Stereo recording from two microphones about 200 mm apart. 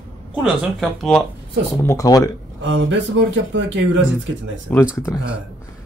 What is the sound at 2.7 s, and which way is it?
Speech, 65° right (ahead or behind).